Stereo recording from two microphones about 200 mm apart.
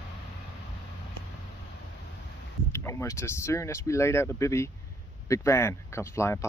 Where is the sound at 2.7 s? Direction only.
15° left (ahead or behind).